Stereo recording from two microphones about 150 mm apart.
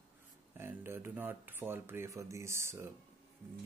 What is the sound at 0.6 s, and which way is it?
Speech, 15° right (ahead or behind).